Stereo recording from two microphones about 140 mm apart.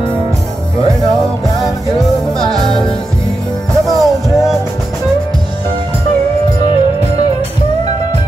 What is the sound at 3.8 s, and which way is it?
Music, centre (ahead or behind).